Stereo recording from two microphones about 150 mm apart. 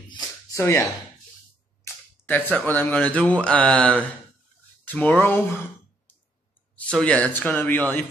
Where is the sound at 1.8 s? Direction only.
15° left (ahead or behind).